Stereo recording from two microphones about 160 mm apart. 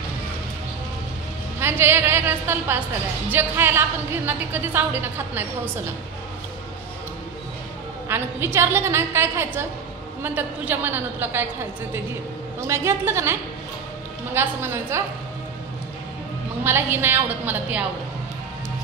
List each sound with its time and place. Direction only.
1.6 s a woman's voice: 15° right (ahead or behind)
8.1 s a woman's voice: 15° right (ahead or behind)
12.5 s a woman's voice: 15° right (ahead or behind)
16.6 s a woman's voice: 15° right (ahead or behind)